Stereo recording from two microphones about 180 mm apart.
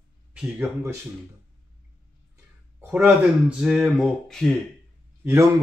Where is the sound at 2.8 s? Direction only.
10° right (ahead or behind).